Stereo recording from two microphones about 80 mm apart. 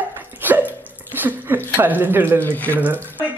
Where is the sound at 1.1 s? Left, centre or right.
Right.